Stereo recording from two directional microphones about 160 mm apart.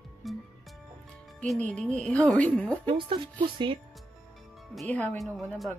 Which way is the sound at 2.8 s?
30° right (ahead or behind).